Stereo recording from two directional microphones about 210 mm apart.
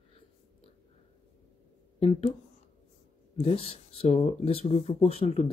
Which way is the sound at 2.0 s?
30° left (ahead or behind).